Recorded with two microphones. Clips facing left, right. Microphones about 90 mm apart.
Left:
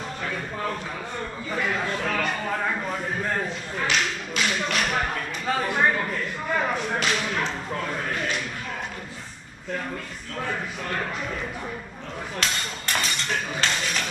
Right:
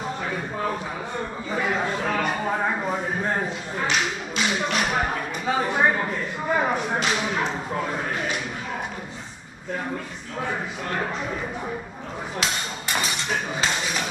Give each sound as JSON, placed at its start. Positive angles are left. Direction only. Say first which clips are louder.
{"t": 0.2, "sound": "speech", "louder": "even", "side_deg": -15}
{"t": 10.4, "sound": "speech", "louder": "right 2 dB", "side_deg": -15}
{"t": 12.4, "sound": "a sound", "louder": "right 1 dB", "side_deg": -10}